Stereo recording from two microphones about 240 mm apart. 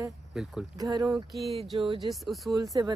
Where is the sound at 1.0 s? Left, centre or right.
Centre.